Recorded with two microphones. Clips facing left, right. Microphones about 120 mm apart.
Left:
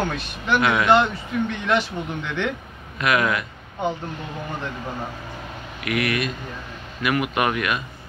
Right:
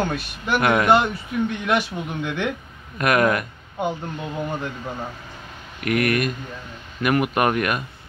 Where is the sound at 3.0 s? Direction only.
45° right (ahead or behind).